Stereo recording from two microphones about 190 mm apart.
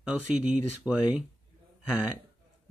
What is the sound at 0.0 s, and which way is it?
A man's voice, 5° right (ahead or behind).